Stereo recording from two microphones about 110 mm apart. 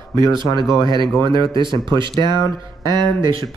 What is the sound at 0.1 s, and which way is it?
Speech, 40° right (ahead or behind).